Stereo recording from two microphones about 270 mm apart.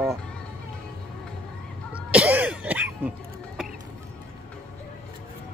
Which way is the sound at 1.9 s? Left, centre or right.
Centre.